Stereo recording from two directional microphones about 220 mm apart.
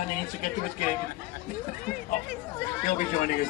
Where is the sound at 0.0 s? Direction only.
35° left (ahead or behind).